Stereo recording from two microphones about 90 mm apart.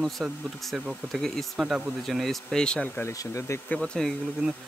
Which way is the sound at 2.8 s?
20° left (ahead or behind).